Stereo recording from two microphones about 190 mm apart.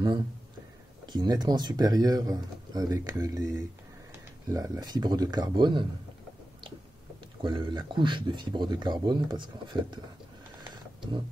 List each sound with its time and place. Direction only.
1.0 s speech: 20° right (ahead or behind)
7.4 s speech: 25° right (ahead or behind)